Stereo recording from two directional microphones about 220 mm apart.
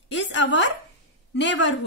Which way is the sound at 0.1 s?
55° left (ahead or behind).